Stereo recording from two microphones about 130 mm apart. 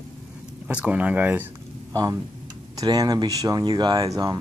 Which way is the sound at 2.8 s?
30° right (ahead or behind).